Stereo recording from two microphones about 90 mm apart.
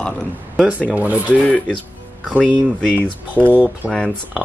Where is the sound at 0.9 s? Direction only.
15° right (ahead or behind).